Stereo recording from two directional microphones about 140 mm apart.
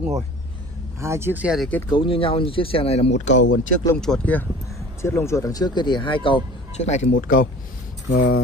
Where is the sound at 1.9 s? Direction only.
40° left (ahead or behind); by 3.7 s 60° left (ahead or behind).